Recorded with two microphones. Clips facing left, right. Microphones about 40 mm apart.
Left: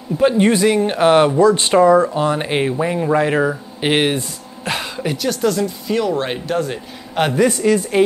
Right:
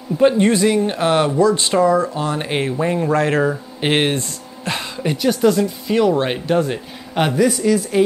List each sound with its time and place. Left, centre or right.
0.4 s speech: left
2.3 s speech: centre
3.8 s speech: centre
4.6 s a sound: centre
5.1 s speech: centre
7.3 s speech: centre